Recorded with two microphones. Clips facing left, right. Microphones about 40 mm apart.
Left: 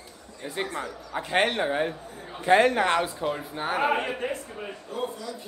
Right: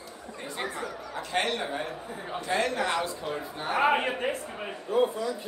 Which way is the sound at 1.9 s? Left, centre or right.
Right.